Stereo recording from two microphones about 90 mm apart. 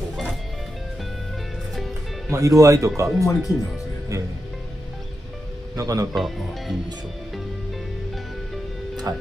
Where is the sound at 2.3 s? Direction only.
35° right (ahead or behind).